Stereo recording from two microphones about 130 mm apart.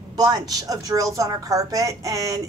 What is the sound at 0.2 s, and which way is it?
A woman's voice, 30° right (ahead or behind).